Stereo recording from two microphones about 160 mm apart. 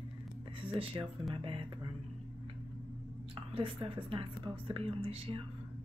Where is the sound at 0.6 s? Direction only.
35° right (ahead or behind).